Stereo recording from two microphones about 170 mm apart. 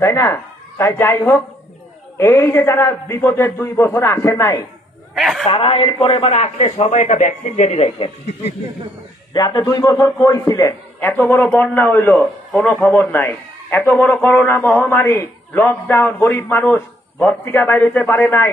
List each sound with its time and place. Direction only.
0.0 s a man's voice: 15° left (ahead or behind)
5.1 s a man's voice: centre (ahead or behind)
5.5 s speech: 35° left (ahead or behind)
9.3 s a man's voice: 25° left (ahead or behind)